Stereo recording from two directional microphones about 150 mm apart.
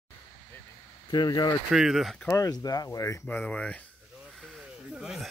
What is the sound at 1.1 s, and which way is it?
Speech, 30° left (ahead or behind).